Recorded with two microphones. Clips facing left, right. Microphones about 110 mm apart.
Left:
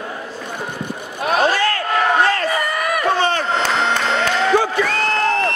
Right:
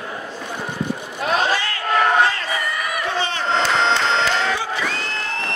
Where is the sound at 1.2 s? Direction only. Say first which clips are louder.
Left 4 dB; 50° left (ahead or behind).